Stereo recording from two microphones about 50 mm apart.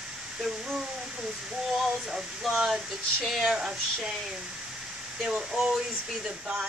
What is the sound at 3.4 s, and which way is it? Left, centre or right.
Speech, centre.